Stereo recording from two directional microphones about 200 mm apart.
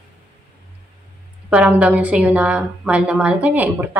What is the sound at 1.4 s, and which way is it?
A woman's voice, 5° right (ahead or behind).